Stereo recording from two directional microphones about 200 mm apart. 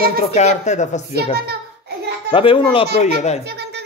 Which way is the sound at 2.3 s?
25° left (ahead or behind).